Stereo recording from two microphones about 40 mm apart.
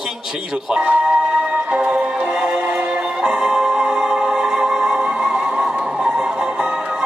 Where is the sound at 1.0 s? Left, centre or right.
Right.